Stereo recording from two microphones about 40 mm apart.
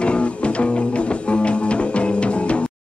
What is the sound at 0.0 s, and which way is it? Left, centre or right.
Music, left.